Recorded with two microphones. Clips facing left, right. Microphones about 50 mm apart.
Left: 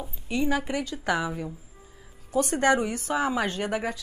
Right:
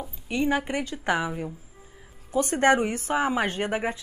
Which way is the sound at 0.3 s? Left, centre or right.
Right.